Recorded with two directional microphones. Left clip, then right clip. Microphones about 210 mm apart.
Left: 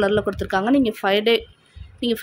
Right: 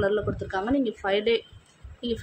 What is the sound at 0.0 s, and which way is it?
Speech, 50° left (ahead or behind).